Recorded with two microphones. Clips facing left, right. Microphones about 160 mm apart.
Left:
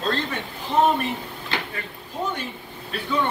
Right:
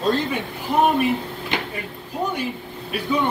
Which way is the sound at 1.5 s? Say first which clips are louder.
Right 3 dB; 20° right (ahead or behind).